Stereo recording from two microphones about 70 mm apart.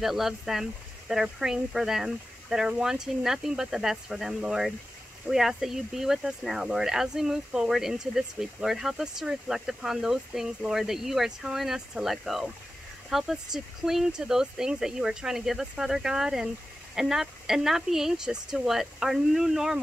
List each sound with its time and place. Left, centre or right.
0.0 s speech: centre